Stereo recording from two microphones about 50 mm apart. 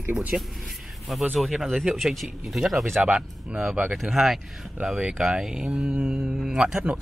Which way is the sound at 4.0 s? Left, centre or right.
Centre.